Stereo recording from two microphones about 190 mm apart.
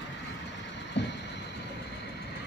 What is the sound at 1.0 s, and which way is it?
Vehicle, 70° left (ahead or behind).